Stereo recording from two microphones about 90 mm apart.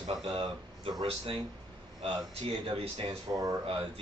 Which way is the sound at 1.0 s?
90° right.